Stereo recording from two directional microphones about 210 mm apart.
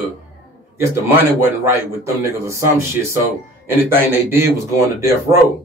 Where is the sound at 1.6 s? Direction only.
15° right (ahead or behind).